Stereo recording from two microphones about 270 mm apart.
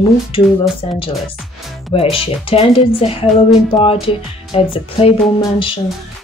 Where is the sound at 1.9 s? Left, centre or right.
Left.